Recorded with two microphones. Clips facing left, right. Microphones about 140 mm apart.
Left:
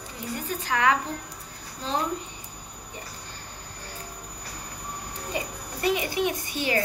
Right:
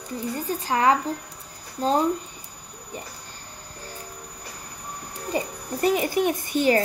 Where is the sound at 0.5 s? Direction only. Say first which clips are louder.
Right 3 dB; 35° right (ahead or behind).